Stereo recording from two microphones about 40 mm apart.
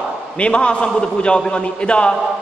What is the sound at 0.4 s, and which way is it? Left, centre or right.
A man's voice, left.